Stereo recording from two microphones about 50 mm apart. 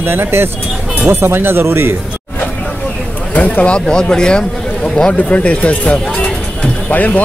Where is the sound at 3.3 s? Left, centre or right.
Left.